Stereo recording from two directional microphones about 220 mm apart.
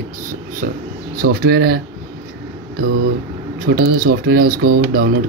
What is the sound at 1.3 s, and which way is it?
Speech, 50° right (ahead or behind).